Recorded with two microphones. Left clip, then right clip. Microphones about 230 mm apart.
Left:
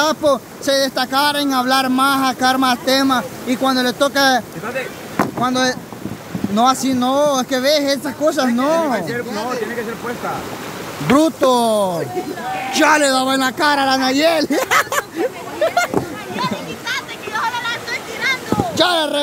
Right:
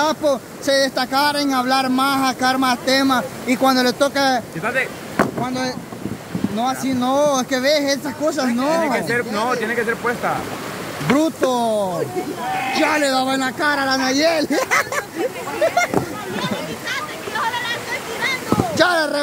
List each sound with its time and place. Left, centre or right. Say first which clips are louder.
0.0 s speech: left 3 dB; centre
5.1 s boat: left 4 dB; left
6.5 s speech: left 7 dB; left
7.0 s speech: left 1 dB; centre
11.1 s speech: left 4 dB; left
16.9 s a sound: left 2 dB; left
18.8 s speech: left 1 dB; centre